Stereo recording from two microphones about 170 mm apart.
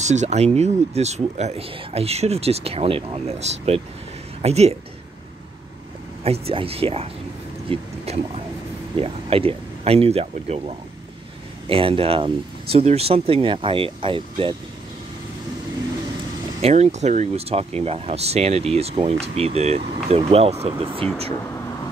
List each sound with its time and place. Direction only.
0.0 s speech: 45° right (ahead or behind)
6.2 s speech: 35° right (ahead or behind)
11.7 s speech: 35° right (ahead or behind)
16.6 s speech: 40° right (ahead or behind)